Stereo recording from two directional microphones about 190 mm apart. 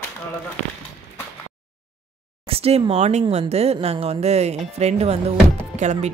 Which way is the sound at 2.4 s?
30° right (ahead or behind).